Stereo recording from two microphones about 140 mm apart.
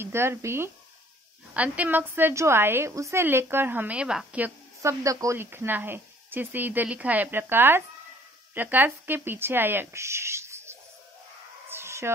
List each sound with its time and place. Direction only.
0.0 s a woman's voice: 15° right (ahead or behind)
4.8 s a woman's voice: 25° right (ahead or behind)
11.7 s a sound: 20° right (ahead or behind)